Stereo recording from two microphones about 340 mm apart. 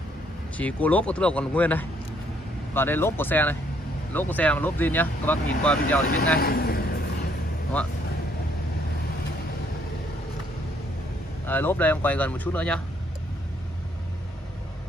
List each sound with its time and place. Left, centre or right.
0.6 s speech: centre
6.4 s a man's voice: left
11.4 s speech: centre